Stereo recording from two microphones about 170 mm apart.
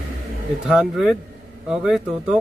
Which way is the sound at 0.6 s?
Centre (ahead or behind).